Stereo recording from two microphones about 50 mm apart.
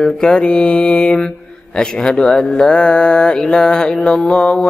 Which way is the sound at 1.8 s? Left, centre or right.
Centre.